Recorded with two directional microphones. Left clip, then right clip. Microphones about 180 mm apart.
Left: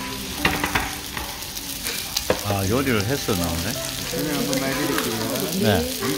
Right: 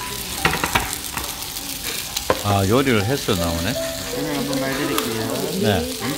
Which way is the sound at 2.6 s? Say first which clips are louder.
Right 4 dB; 25° right (ahead or behind).